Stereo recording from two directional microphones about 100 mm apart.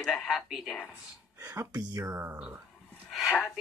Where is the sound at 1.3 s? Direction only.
25° right (ahead or behind).